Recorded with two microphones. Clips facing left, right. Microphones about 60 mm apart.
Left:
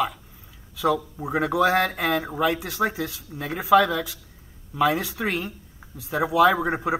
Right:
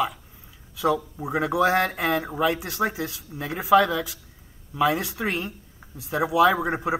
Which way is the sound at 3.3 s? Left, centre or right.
Centre.